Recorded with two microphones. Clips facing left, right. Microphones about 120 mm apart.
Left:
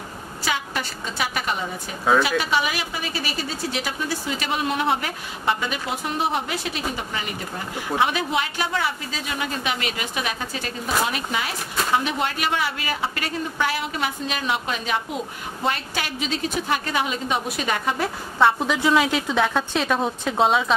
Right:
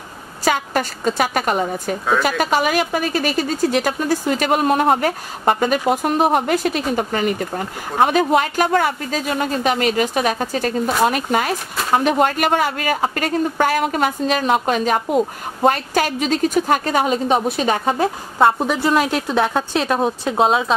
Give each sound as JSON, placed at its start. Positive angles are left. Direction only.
{"t": 0.5, "sound": "a woman's voice", "side_deg": -45}
{"t": 19.2, "sound": "a woman's voice", "side_deg": -15}